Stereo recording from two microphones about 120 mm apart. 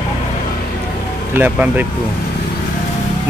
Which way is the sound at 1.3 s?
15° right (ahead or behind).